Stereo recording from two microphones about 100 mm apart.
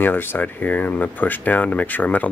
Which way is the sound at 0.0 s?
20° left (ahead or behind).